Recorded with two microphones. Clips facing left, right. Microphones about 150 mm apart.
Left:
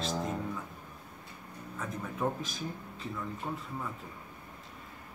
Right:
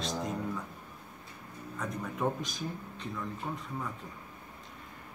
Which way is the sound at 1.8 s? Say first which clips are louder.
Right 1 dB; centre (ahead or behind).